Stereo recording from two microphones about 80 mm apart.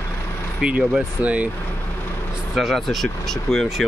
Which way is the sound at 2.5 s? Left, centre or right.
Centre.